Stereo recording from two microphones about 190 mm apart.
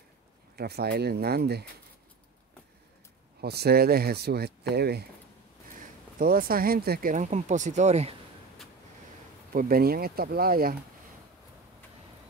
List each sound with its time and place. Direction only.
0.6 s speech: 60° right (ahead or behind)
3.3 s speech: 55° right (ahead or behind)
6.1 s speech: 50° right (ahead or behind)
9.5 s speech: 50° right (ahead or behind)